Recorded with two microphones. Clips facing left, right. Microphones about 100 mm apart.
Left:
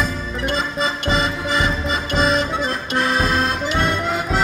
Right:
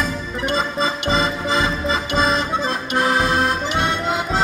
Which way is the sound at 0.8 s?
30° right (ahead or behind).